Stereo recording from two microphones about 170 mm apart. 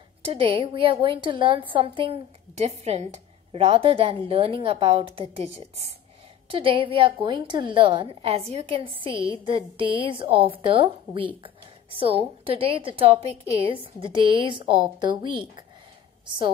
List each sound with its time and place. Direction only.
0.2 s a woman's voice: 35° right (ahead or behind)
6.5 s a woman's voice: 30° right (ahead or behind)